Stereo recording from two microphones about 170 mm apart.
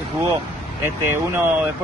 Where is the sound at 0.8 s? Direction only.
15° right (ahead or behind).